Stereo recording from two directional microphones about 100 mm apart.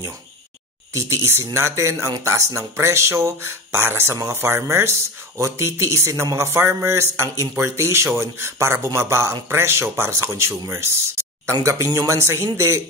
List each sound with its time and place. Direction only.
0.9 s speech: 30° right (ahead or behind)